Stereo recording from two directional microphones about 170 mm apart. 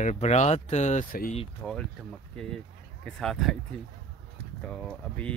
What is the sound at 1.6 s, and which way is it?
Speech, centre (ahead or behind).